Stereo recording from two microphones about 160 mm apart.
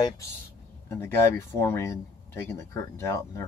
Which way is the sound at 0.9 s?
15° left (ahead or behind).